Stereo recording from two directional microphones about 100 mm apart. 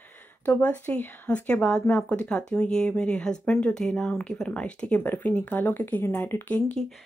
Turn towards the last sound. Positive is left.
turn(degrees=10)  # may be behind; listen again after turning